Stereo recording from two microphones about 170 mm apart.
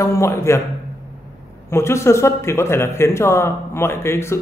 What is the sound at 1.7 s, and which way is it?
Speech, 15° left (ahead or behind).